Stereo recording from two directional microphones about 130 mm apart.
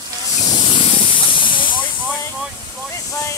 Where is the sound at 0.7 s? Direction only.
40° left (ahead or behind).